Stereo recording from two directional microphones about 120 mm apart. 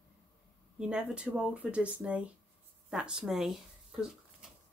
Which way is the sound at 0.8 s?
5° right (ahead or behind).